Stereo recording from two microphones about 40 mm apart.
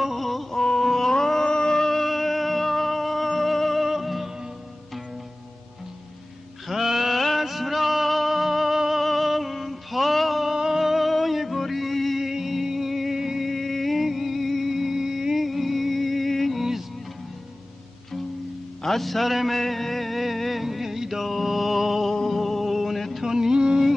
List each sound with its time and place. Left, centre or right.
0.0 s music: centre
0.6 s music: centre
6.7 s music: centre
10.5 s music: centre
12.2 s music: centre
18.8 s music: centre
23.2 s a sound: centre